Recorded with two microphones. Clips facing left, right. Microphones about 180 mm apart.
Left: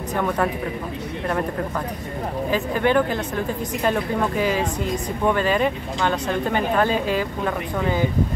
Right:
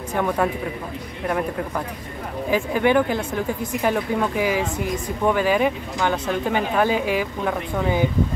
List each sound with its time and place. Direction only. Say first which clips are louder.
2.5 s speech: right 2 dB; 15° right (ahead or behind)